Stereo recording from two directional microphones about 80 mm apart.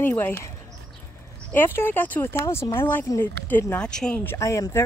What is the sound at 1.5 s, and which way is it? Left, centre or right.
Speech, left.